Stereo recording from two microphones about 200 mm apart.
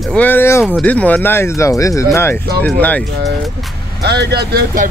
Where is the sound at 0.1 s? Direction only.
10° left (ahead or behind).